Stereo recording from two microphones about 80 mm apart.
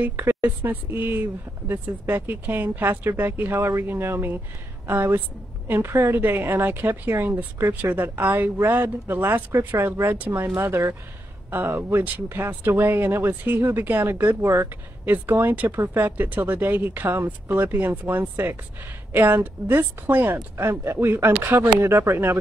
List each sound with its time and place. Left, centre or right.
0.2 s speech: right